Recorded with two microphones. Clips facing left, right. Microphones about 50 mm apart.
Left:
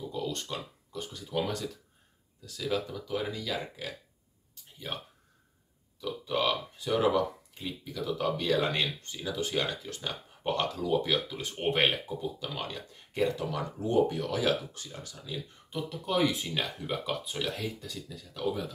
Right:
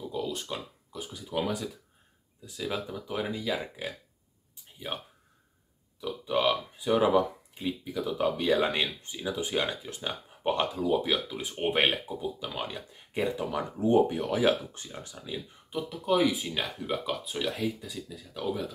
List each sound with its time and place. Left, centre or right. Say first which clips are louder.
0.1 s speech: right 2 dB; centre
5.9 s speech: right 2 dB; centre
15.7 s speech: right 4 dB; centre